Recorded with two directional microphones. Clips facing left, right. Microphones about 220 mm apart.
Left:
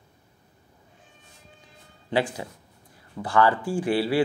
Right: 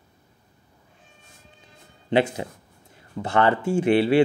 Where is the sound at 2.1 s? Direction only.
20° right (ahead or behind).